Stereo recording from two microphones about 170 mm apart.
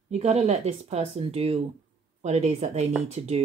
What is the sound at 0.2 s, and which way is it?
Speech, 40° right (ahead or behind).